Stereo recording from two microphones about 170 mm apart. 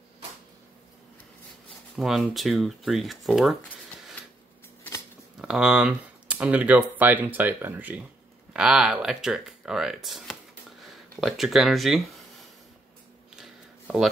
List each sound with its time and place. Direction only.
2.0 s speech: centre (ahead or behind)
5.4 s speech: 5° right (ahead or behind)
13.4 s a sound: 5° right (ahead or behind)